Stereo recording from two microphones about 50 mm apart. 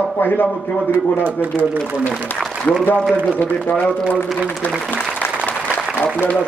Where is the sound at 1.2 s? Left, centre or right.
Right.